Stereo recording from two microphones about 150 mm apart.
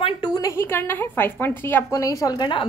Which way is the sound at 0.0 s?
25° left (ahead or behind).